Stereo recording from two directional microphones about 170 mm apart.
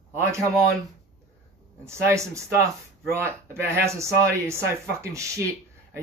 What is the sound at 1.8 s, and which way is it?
Speech, 15° right (ahead or behind).